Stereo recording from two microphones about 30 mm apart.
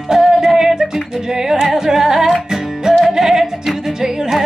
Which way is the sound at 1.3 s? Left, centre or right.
Centre.